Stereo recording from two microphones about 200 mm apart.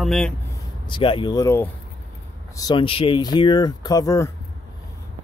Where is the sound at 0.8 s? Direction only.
25° left (ahead or behind).